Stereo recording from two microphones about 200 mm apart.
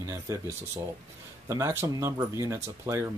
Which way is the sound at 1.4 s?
15° right (ahead or behind).